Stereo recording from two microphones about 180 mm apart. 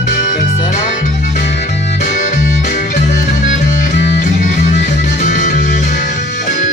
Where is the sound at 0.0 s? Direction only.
45° left (ahead or behind).